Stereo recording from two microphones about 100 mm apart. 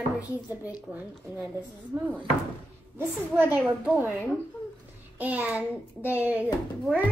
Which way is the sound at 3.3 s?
20° right (ahead or behind).